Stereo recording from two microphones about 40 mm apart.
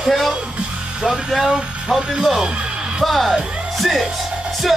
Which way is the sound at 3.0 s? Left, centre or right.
Centre.